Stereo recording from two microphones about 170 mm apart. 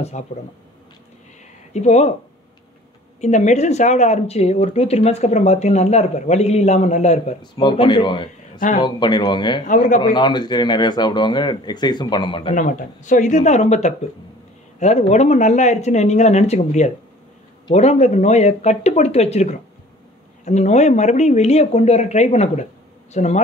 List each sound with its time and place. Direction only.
0.2 s speech: 45° left (ahead or behind)
1.7 s speech: 40° left (ahead or behind)
3.2 s speech: 45° left (ahead or behind)
7.6 s speech: 30° left (ahead or behind)
9.7 s speech: 50° left (ahead or behind)
9.9 s speech: 25° left (ahead or behind)
12.5 s speech: 50° left (ahead or behind)